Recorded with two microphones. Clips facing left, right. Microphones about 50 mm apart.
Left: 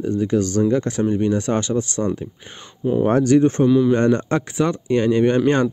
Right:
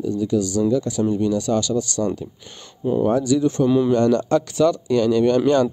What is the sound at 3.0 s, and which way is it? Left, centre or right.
Speech, left.